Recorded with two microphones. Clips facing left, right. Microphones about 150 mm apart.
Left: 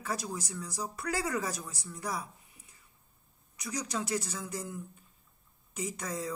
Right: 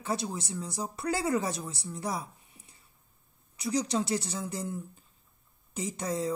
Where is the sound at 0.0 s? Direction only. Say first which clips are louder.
Right 3 dB; 25° right (ahead or behind).